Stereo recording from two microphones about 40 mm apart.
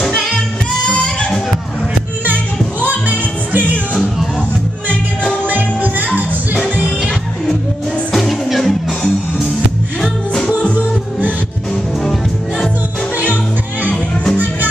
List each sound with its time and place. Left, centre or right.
2.8 s music: right
5.5 s music: right
6.0 s music: right
8.1 s music: centre
12.0 s music: centre